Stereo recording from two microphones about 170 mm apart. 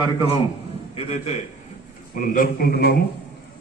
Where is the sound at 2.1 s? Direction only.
55° left (ahead or behind).